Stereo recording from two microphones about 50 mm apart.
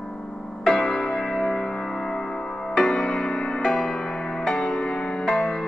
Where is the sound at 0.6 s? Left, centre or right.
Centre.